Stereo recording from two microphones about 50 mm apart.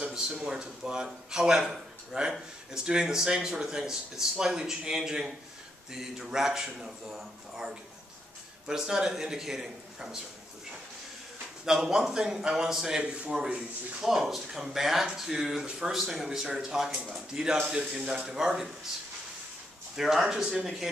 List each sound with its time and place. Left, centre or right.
0.0 s speech: right
11.6 s speech: centre
20.0 s speech: centre